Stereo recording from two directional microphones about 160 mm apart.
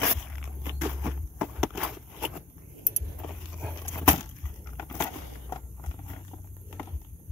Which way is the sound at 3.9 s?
20° left (ahead or behind).